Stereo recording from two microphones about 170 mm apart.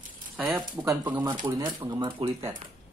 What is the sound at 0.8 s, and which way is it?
Speech, 10° right (ahead or behind).